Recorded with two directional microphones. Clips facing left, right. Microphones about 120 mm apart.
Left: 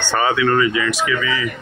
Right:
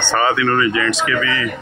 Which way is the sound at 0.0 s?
15° left (ahead or behind).